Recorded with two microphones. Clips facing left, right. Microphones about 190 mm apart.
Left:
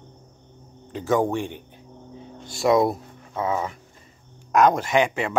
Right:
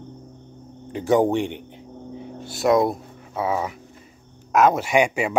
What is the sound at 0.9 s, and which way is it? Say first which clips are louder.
Speech: right 4 dB; 15° right (ahead or behind).